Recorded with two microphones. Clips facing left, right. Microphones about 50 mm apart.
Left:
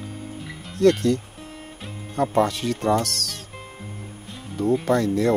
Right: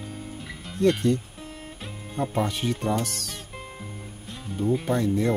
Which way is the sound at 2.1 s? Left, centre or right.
Left.